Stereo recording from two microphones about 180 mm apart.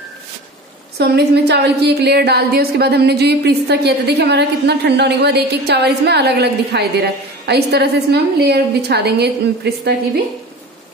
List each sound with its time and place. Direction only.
0.9 s a woman's voice: 65° right (ahead or behind)